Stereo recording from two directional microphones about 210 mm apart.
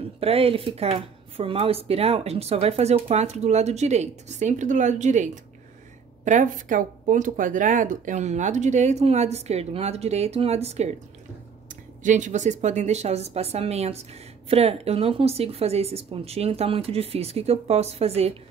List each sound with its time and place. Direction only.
0.2 s speech: 30° right (ahead or behind)